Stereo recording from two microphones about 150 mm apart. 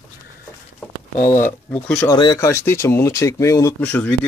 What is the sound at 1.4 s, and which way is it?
Speech, 10° left (ahead or behind).